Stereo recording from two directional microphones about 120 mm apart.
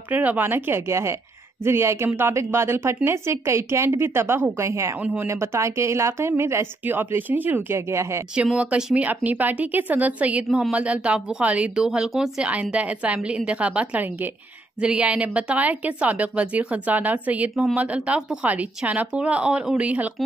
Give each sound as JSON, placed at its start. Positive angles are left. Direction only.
{"t": 0.1, "sound": "a woman's voice", "side_deg": -15}
{"t": 5.0, "sound": "speech", "side_deg": -10}
{"t": 5.3, "sound": "a woman's voice", "side_deg": -25}
{"t": 8.4, "sound": "speech", "side_deg": -10}